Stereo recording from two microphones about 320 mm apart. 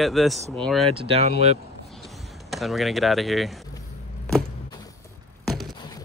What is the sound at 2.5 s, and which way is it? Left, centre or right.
Speech, centre.